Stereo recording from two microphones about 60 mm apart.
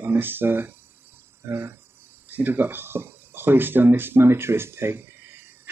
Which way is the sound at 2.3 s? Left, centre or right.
Right.